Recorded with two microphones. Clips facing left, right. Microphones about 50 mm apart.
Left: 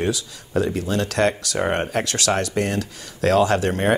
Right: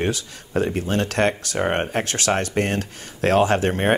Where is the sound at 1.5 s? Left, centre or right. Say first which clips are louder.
Even; right.